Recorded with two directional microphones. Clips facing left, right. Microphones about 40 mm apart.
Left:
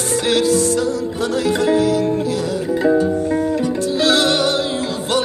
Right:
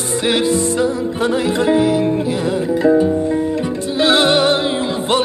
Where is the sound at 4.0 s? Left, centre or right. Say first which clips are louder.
Right 4 dB; right.